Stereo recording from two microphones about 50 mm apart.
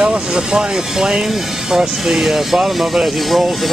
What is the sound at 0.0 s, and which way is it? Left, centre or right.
Speech, centre.